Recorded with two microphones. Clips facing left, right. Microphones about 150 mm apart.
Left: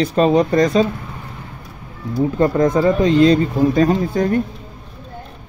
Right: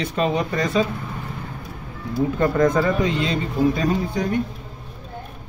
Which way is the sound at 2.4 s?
30° left (ahead or behind).